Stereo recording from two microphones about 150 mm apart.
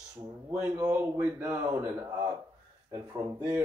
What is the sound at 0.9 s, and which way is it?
Speech, 15° right (ahead or behind).